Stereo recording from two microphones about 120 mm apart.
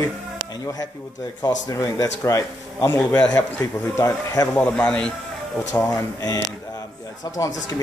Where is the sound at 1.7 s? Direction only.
25° left (ahead or behind).